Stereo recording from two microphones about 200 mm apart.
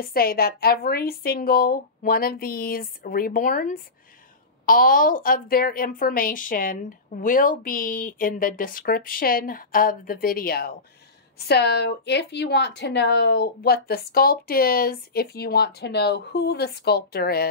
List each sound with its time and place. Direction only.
0.0 s a woman's voice: 50° left (ahead or behind)